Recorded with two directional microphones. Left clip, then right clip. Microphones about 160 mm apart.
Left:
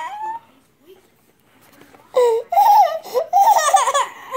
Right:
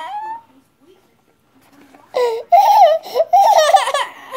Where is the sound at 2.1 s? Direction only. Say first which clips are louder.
Right 2 dB; 20° right (ahead or behind).